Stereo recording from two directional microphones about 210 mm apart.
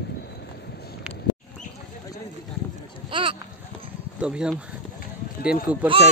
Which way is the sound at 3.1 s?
25° right (ahead or behind).